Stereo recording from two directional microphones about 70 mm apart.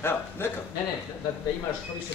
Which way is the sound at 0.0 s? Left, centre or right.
Left.